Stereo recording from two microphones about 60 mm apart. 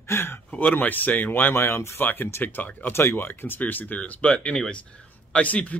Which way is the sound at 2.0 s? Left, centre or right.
Left.